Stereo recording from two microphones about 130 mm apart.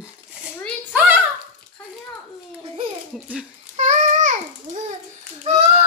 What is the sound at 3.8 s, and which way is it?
Babbling, 70° right (ahead or behind).